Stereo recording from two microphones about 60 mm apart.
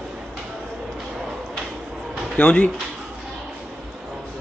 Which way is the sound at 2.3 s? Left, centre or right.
Left.